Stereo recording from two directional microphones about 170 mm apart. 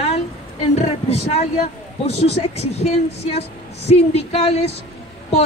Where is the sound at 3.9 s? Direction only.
35° left (ahead or behind).